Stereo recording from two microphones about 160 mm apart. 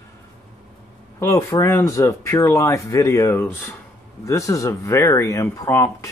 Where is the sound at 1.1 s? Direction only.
15° left (ahead or behind).